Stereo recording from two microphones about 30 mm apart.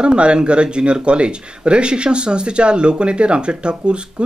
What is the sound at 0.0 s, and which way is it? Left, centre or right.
Speech, right.